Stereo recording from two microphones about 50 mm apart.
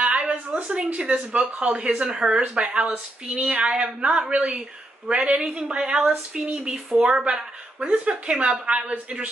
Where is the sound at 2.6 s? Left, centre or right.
Right.